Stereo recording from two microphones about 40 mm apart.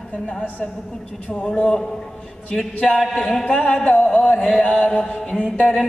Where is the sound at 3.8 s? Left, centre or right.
Left.